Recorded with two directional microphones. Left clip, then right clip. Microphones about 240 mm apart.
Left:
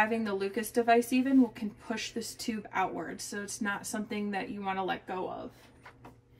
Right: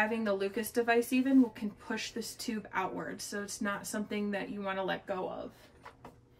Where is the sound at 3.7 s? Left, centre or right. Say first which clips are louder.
Left 2 dB; centre.